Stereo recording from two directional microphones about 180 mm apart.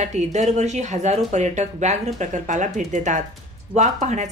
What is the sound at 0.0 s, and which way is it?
Speech, 40° right (ahead or behind).